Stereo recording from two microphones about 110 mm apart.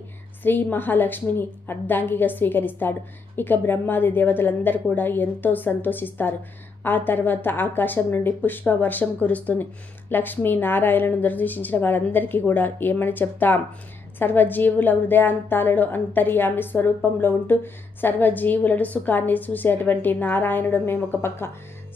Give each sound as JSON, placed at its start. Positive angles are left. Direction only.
{"t": 0.4, "sound": "speech", "side_deg": 15}